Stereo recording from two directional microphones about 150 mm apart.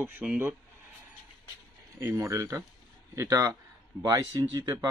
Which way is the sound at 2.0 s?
20° right (ahead or behind).